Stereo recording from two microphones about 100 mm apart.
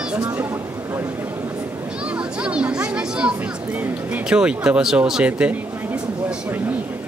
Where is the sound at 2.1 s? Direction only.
10° right (ahead or behind).